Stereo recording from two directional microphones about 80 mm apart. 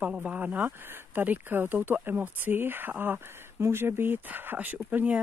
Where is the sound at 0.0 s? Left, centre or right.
Centre.